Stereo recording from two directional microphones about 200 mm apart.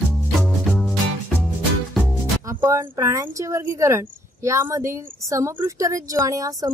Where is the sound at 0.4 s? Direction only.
Centre (ahead or behind).